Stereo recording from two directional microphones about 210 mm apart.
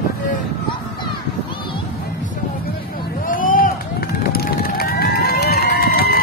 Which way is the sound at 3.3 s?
40° left (ahead or behind).